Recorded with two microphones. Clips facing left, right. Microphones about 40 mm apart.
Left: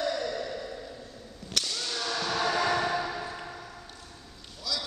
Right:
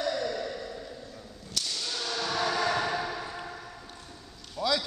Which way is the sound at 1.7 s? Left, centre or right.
Centre.